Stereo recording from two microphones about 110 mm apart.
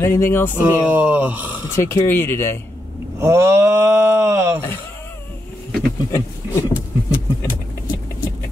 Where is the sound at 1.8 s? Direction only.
20° left (ahead or behind).